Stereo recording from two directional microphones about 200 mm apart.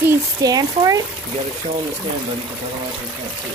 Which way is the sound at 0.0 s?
20° right (ahead or behind).